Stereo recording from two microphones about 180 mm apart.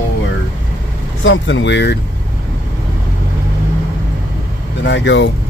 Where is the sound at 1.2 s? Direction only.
90° left.